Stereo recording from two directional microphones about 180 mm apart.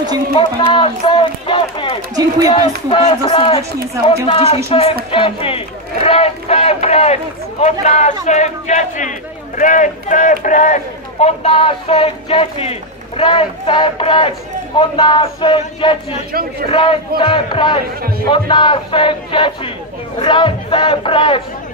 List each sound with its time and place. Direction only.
0.4 s a man's voice: 25° left (ahead or behind)